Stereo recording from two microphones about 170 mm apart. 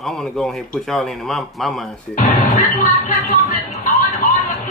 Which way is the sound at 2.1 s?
50° left (ahead or behind).